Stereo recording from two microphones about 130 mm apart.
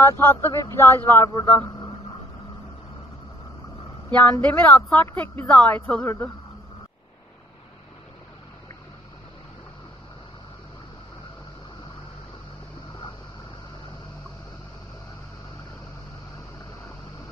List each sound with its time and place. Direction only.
0.0 s speech: 20° left (ahead or behind)
4.1 s speech: 10° left (ahead or behind)